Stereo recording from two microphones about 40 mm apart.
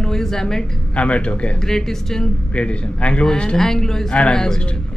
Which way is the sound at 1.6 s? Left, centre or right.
Centre.